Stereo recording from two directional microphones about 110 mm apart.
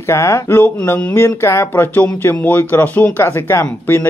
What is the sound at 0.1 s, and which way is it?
A man's voice, 25° left (ahead or behind).